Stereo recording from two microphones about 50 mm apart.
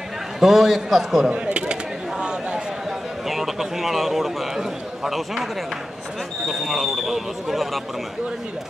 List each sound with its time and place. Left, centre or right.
0.4 s speech: centre
1.3 s a sound: right
3.3 s a man's voice: centre